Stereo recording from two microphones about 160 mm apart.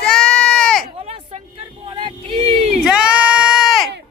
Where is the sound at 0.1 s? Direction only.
5° left (ahead or behind).